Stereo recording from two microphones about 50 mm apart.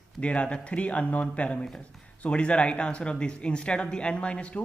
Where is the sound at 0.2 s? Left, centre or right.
Left.